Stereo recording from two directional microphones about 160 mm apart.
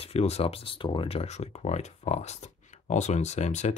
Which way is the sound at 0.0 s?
40° left (ahead or behind).